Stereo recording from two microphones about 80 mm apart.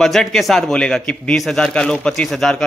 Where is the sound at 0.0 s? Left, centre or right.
Centre.